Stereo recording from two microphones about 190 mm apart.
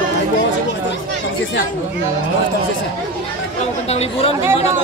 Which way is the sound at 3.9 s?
35° left (ahead or behind).